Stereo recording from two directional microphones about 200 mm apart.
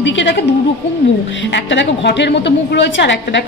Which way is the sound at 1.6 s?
60° left (ahead or behind).